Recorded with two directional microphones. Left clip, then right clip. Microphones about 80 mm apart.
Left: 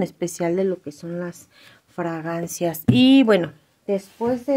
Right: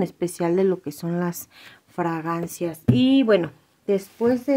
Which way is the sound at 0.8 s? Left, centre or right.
Right.